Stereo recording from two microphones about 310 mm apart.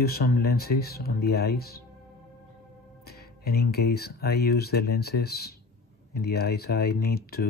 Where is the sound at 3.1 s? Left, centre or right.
Left.